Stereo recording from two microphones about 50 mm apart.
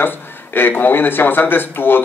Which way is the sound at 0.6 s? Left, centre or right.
Left.